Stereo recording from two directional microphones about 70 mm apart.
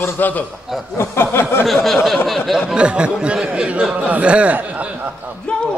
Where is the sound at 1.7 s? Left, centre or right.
Centre.